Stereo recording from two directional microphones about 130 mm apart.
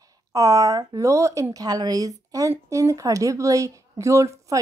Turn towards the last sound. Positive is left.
turn(degrees=-25)  # may be behind; listen again after turning